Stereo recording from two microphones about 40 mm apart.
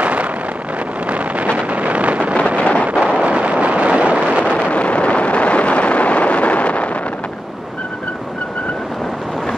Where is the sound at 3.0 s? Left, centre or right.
Right.